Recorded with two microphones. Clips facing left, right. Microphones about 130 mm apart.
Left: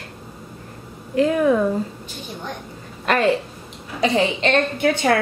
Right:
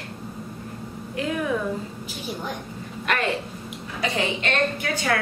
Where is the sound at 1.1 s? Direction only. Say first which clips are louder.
Left 10 dB; 35° left (ahead or behind).